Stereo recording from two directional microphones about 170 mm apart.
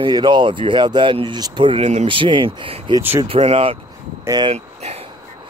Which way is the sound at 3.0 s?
10° right (ahead or behind).